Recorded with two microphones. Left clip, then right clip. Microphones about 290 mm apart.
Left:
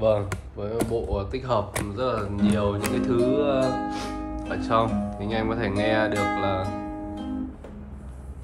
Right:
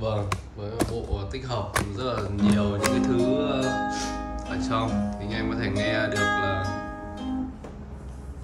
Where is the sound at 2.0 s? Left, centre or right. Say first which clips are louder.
Left 2 dB; centre.